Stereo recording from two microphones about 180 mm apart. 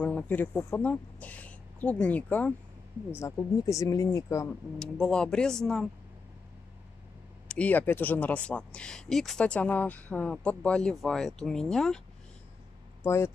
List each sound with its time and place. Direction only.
0.0 s speech: 10° left (ahead or behind)
4.7 s speech: centre (ahead or behind)
7.4 s speech: 10° left (ahead or behind)
13.0 s speech: 15° left (ahead or behind)